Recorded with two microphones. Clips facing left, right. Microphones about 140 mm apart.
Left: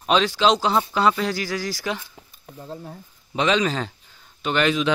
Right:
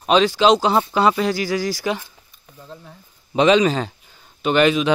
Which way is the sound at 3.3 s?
15° right (ahead or behind).